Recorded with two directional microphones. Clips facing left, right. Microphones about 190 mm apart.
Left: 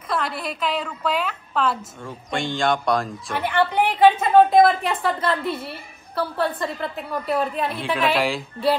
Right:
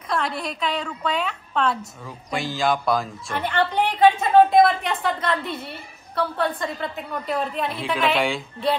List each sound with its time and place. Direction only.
0.1 s a woman's voice: centre (ahead or behind)
4.6 s a woman's voice: 30° left (ahead or behind)
5.3 s a woman's voice: 5° left (ahead or behind)